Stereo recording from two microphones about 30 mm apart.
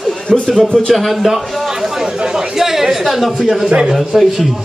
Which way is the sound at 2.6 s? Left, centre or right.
Centre.